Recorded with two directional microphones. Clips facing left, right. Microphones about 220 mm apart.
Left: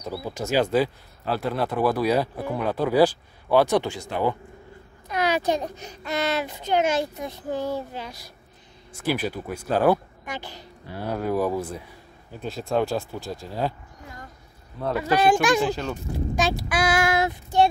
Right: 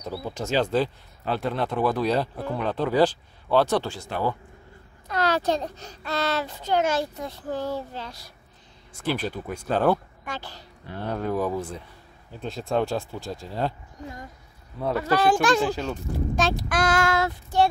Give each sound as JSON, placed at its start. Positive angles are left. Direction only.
{"t": 0.0, "sound": "speech", "side_deg": 5}
{"t": 15.0, "sound": "speech", "side_deg": 15}
{"t": 15.6, "sound": "speech", "side_deg": -5}
{"t": 16.3, "sound": "speech", "side_deg": 10}